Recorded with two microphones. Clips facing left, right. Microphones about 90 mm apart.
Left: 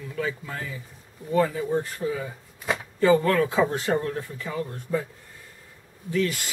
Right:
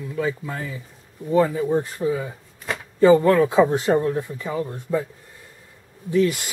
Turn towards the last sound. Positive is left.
turn(degrees=-20)  # may be behind; listen again after turning